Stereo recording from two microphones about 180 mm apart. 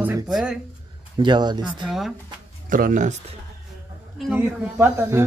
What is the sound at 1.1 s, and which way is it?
Speech, 25° right (ahead or behind).